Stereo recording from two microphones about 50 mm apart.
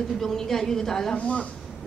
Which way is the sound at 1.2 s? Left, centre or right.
Left.